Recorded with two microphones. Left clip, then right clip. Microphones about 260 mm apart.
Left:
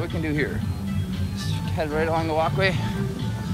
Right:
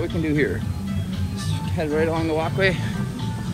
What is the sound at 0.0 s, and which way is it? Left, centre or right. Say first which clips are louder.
Speech: right 4 dB; left.